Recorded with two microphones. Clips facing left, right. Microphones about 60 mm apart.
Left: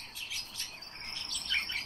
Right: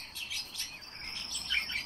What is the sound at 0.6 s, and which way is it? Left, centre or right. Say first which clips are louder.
Bird: even; centre.